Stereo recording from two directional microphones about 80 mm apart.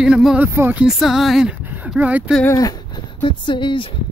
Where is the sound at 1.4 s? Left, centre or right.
Centre.